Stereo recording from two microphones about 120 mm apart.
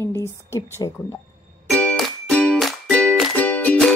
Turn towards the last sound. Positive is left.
turn(degrees=10)  # may be behind; listen again after turning